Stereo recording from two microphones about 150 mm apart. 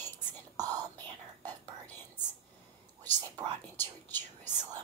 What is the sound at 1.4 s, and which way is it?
Whispering, 10° left (ahead or behind).